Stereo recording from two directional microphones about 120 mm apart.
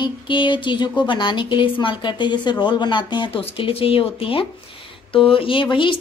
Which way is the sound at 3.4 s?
50° left (ahead or behind).